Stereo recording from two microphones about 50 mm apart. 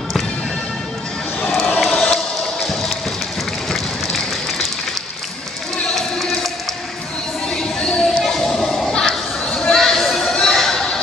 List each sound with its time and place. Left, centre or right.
1.9 s music: centre
3.7 s a sound: centre
5.9 s basketball bounce: centre
7.4 s music: centre
8.2 s children playing: centre
9.5 s a sound: centre